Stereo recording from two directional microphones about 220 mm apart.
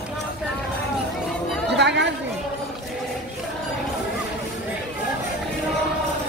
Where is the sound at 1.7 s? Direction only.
50° right (ahead or behind).